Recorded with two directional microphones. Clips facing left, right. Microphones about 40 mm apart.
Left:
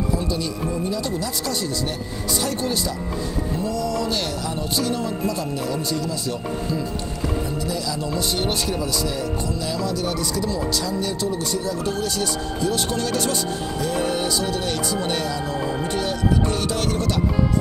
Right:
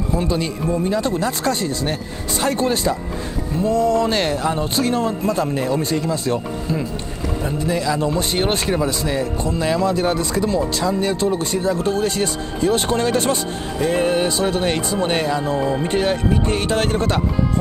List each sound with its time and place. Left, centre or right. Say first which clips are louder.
0.1 s speech: right 4 dB; right
15.5 s speech: right 5 dB; centre
15.9 s speech: right 4 dB; right